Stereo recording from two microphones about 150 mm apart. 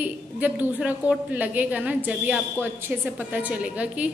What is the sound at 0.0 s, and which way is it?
A woman's voice, 10° right (ahead or behind).